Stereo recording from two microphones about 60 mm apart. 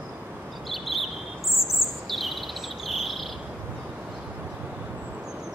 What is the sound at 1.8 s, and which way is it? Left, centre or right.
Insect, centre.